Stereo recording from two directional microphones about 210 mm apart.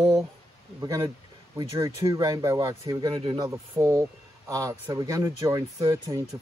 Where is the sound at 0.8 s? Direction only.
15° right (ahead or behind).